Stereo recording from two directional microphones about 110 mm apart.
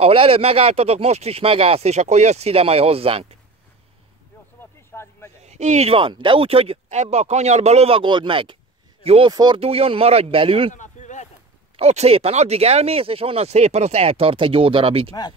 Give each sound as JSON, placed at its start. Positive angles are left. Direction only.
{"t": 0.0, "sound": "speech", "side_deg": -55}
{"t": 4.6, "sound": "a sound", "side_deg": 20}
{"t": 5.4, "sound": "speech", "side_deg": -90}
{"t": 5.9, "sound": "speech", "side_deg": -50}
{"t": 9.0, "sound": "speech", "side_deg": -65}
{"t": 9.3, "sound": "speech", "side_deg": -40}
{"t": 9.6, "sound": "speech", "side_deg": -60}
{"t": 11.0, "sound": "a sound", "side_deg": 90}
{"t": 11.7, "sound": "speech", "side_deg": -75}